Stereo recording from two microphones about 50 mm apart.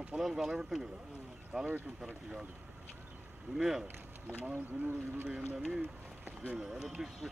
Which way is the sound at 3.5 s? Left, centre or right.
Centre.